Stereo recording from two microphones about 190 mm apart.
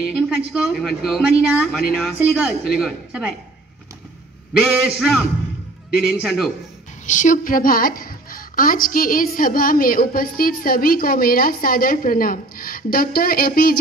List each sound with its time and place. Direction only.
0.5 s speech: centre (ahead or behind)
4.6 s speech: centre (ahead or behind)
7.1 s a woman's voice: 40° left (ahead or behind)